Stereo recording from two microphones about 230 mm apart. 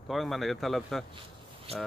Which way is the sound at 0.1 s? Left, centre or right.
Centre.